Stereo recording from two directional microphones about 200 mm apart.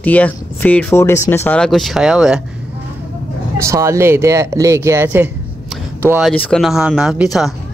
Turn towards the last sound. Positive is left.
turn(degrees=0)  # may be behind; listen again after turning